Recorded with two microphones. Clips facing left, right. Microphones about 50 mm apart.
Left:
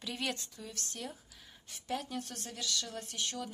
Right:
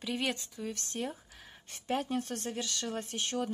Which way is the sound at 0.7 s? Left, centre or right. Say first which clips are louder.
Right 7 dB; right.